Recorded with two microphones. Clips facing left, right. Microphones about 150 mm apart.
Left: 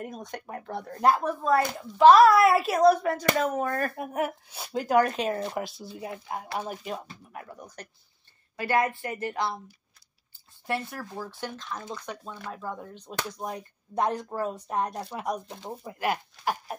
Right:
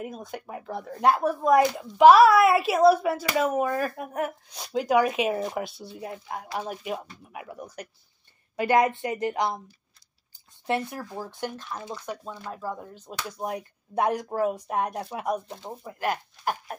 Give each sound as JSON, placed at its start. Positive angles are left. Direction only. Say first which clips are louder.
{"t": 0.0, "sound": "speech", "louder": "right 2 dB", "side_deg": -5}
{"t": 2.1, "sound": "speech", "louder": "right 1 dB", "side_deg": -5}
{"t": 10.7, "sound": "speech", "louder": "right 3 dB", "side_deg": -15}
{"t": 15.8, "sound": "speech", "louder": "even", "side_deg": 10}